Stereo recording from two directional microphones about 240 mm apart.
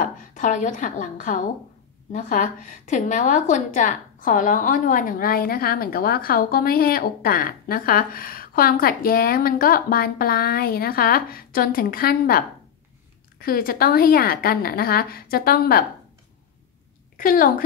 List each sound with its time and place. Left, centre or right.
0.0 s a woman's voice: left
17.2 s a woman's voice: left